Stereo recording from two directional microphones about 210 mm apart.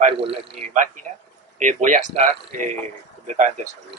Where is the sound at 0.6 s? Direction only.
35° right (ahead or behind).